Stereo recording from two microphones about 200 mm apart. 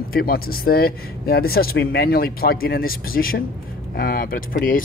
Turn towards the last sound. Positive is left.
turn(degrees=45)  # may be behind; listen again after turning